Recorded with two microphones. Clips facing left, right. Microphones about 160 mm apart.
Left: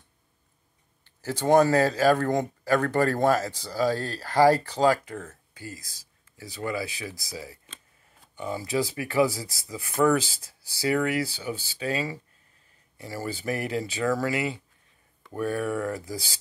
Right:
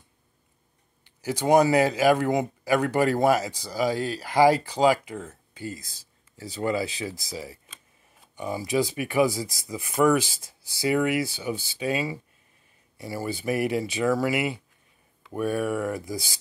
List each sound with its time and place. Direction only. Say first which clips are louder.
1.0 s a man's voice: right 1 dB; 15° right (ahead or behind)